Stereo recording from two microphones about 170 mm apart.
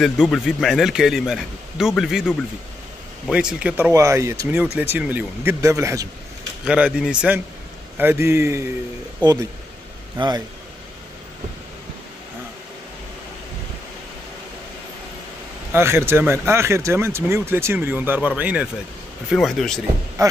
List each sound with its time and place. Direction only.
0.0 s speech: centre (ahead or behind)
3.9 s speech: 20° right (ahead or behind)
6.6 s speech: 5° right (ahead or behind); by 10.4 s 25° right (ahead or behind)
15.7 s speech: 15° right (ahead or behind); by 19.8 s centre (ahead or behind)